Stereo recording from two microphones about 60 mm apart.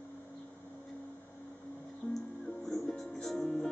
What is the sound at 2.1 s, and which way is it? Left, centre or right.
Music, centre.